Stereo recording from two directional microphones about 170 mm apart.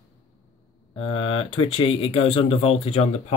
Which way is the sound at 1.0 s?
30° left (ahead or behind).